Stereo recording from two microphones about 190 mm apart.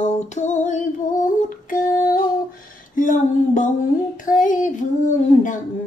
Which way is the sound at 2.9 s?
45° left (ahead or behind).